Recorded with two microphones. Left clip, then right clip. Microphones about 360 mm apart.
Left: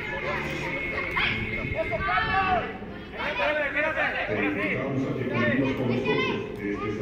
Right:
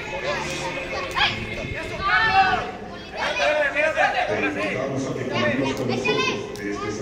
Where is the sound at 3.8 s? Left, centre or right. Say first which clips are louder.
Right 6 dB; right.